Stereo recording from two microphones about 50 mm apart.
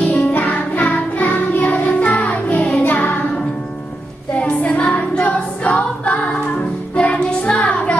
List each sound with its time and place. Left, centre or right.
0.0 s music: left
4.3 s a capella: left
7.0 s child singing: left